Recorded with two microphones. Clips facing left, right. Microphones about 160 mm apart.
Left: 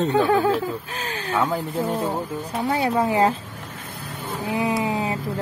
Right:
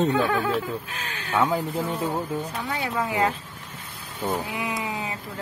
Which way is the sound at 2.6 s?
40° left (ahead or behind).